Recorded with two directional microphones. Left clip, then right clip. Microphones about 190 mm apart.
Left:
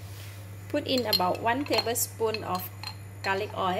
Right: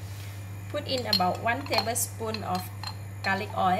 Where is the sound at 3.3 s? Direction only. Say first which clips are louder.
Right 3 dB; 40° left (ahead or behind).